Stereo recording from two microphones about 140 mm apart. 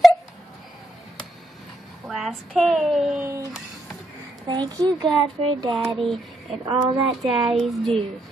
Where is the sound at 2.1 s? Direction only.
Centre (ahead or behind).